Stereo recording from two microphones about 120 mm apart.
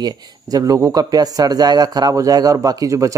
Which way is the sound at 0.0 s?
35° right (ahead or behind).